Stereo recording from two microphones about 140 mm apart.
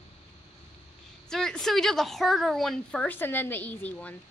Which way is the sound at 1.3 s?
5° left (ahead or behind).